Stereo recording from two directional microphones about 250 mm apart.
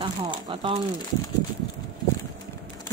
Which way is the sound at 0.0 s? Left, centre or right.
Right.